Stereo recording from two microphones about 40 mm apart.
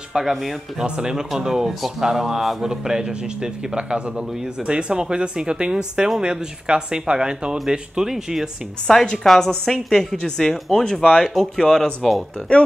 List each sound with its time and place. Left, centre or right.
0.1 s speech: centre
0.8 s a man's voice: centre
8.1 s a man's voice: centre
8.8 s speech: centre